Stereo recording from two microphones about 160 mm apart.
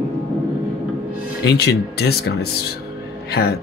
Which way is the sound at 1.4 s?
90° left.